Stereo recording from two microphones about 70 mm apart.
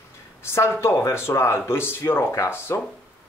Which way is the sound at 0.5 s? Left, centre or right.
Left.